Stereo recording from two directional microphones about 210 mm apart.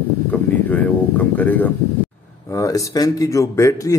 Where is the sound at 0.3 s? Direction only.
10° left (ahead or behind).